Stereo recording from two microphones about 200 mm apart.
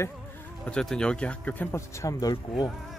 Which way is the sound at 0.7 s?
5° left (ahead or behind).